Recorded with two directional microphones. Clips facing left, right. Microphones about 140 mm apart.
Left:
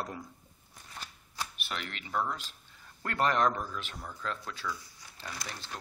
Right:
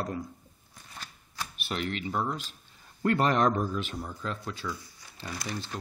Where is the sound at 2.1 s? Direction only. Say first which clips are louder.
Right 2 dB; 15° right (ahead or behind).